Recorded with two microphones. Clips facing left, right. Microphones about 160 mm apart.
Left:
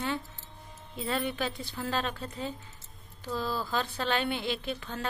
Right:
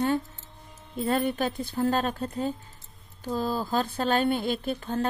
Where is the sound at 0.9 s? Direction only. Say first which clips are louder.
Right 6 dB; 45° right (ahead or behind).